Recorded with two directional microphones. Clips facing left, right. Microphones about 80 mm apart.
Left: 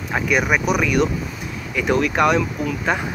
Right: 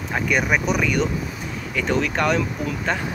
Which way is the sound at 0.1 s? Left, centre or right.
Centre.